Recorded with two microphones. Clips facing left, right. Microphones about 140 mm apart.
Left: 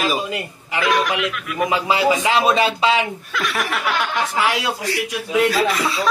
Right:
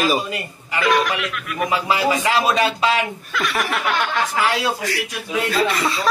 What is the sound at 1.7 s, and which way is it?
Speech, 20° left (ahead or behind).